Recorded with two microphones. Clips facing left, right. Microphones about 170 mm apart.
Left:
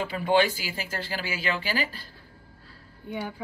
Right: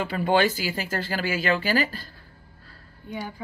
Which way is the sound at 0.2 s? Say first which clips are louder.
Right 1 dB; 45° right (ahead or behind).